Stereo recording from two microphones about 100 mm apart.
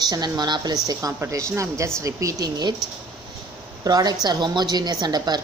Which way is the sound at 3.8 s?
40° right (ahead or behind).